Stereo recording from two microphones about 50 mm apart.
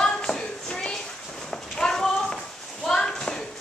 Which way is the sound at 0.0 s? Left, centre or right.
Centre.